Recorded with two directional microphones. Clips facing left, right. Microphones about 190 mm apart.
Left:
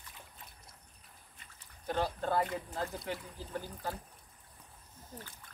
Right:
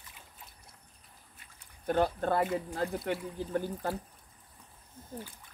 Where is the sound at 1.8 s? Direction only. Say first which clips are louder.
Right 5 dB; 55° right (ahead or behind).